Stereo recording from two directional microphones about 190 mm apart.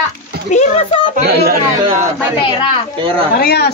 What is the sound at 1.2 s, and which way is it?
Speech, 55° right (ahead or behind).